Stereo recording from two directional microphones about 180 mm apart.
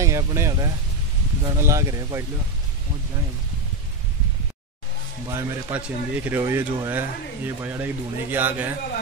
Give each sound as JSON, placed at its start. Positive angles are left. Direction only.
{"t": 0.0, "sound": "speech", "side_deg": -15}
{"t": 5.3, "sound": "speech", "side_deg": -10}